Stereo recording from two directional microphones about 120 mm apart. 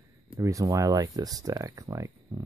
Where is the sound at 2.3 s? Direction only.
35° right (ahead or behind).